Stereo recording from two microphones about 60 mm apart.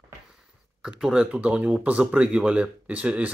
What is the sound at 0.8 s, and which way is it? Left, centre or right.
Speech, centre.